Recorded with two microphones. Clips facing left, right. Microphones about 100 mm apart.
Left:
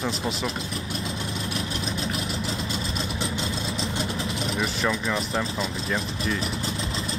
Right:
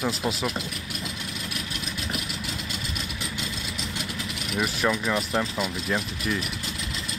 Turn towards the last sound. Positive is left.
turn(degrees=30)  # may be behind; listen again after turning